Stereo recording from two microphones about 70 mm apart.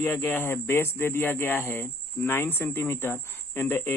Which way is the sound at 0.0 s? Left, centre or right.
Left.